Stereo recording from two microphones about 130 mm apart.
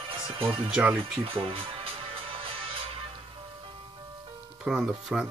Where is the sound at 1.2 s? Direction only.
45° right (ahead or behind).